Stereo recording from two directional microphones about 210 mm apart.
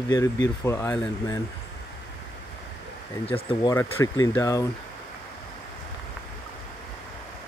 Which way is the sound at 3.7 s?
10° left (ahead or behind).